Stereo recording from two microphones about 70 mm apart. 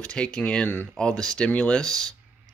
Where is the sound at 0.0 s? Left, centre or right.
Centre.